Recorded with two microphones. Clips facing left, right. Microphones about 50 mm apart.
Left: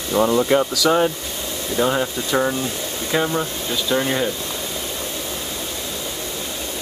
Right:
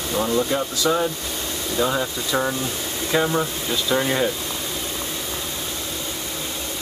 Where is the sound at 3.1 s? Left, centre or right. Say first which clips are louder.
Even; centre.